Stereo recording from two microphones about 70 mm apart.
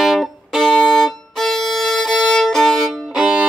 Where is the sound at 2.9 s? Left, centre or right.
Centre.